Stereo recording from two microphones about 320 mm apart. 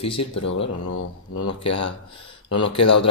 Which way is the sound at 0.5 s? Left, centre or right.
Left.